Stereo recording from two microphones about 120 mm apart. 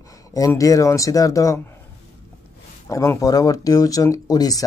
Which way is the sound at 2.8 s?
25° left (ahead or behind).